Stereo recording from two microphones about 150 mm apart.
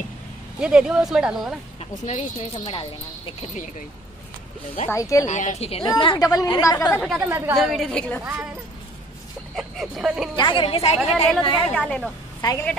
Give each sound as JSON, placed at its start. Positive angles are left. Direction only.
{"t": 0.6, "sound": "speech", "side_deg": -5}
{"t": 1.8, "sound": "speech", "side_deg": 45}
{"t": 2.7, "sound": "a woman's voice", "side_deg": 35}
{"t": 4.9, "sound": "a woman's voice", "side_deg": 20}
{"t": 5.2, "sound": "speech", "side_deg": 55}
{"t": 5.9, "sound": "a woman's voice", "side_deg": 25}
{"t": 7.0, "sound": "speech", "side_deg": 0}
{"t": 7.2, "sound": "a woman's voice", "side_deg": -15}
{"t": 7.5, "sound": "speech", "side_deg": 0}
{"t": 9.6, "sound": "speech", "side_deg": 0}
{"t": 10.3, "sound": "a woman's voice", "side_deg": 35}
{"t": 11.0, "sound": "a woman's voice", "side_deg": 0}
{"t": 12.4, "sound": "a woman's voice", "side_deg": 30}